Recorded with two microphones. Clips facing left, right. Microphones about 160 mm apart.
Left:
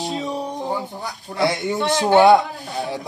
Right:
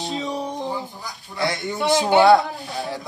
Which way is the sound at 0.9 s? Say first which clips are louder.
Left 5 dB; 75° left (ahead or behind).